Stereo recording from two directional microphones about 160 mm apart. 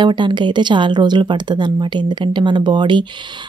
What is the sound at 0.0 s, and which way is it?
Speech, 30° right (ahead or behind).